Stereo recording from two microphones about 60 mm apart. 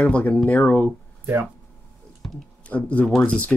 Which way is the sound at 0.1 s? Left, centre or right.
Centre.